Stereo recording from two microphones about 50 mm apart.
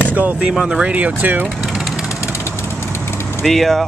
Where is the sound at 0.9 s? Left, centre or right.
Right.